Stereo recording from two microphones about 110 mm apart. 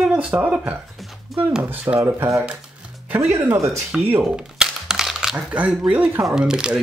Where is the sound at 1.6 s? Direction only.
15° right (ahead or behind).